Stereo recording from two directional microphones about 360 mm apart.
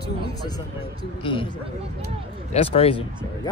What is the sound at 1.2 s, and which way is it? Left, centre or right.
Speech, centre.